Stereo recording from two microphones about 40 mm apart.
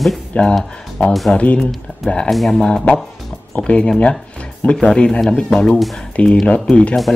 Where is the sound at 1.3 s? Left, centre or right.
Left.